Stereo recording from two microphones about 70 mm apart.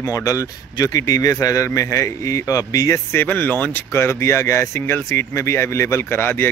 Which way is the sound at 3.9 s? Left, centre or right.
Left.